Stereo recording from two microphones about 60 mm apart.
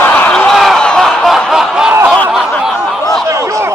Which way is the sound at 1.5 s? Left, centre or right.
Centre.